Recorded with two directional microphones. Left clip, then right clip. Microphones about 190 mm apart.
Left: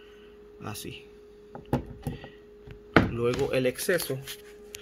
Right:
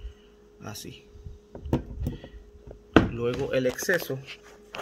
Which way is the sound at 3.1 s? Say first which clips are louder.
Left 1 dB; 5° left (ahead or behind).